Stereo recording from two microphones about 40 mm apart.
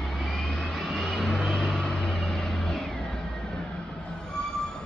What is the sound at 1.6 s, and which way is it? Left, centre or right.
Vehicle, left.